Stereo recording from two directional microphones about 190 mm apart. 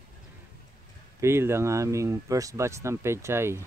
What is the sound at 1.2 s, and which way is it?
Speech, 15° right (ahead or behind).